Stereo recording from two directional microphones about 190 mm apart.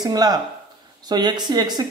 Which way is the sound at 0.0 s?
20° right (ahead or behind).